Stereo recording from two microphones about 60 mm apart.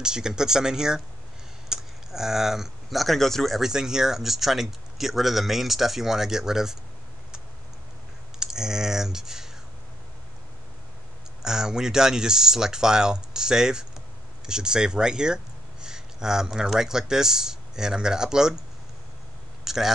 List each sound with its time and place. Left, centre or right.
0.0 s speech: centre
3.6 s speech: centre
8.4 s speech: centre
11.4 s speech: centre
19.6 s a sound: centre